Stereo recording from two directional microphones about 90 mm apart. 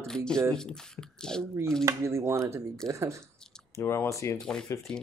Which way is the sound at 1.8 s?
30° right (ahead or behind).